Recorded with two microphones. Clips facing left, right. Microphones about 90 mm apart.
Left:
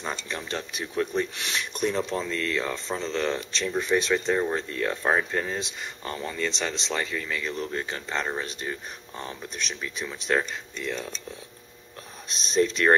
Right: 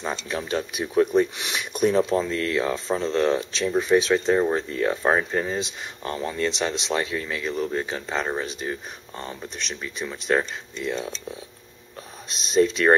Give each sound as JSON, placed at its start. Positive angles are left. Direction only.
{"t": 0.0, "sound": "speech", "side_deg": -5}
{"t": 3.1, "sound": "speech", "side_deg": -30}
{"t": 3.3, "sound": "speech", "side_deg": -10}
{"t": 12.3, "sound": "speech", "side_deg": 0}